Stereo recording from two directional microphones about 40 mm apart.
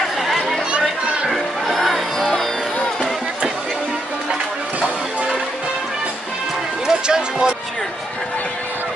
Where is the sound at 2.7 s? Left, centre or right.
Left.